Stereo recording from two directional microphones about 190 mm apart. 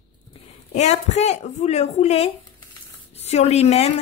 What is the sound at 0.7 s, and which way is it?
A woman's voice, 35° left (ahead or behind).